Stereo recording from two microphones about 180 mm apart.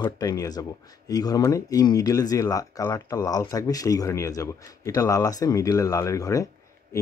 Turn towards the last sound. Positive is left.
turn(degrees=15)  # may be behind; listen again after turning